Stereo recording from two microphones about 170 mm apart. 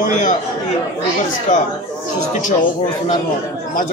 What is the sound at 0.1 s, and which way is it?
Speech, 50° left (ahead or behind).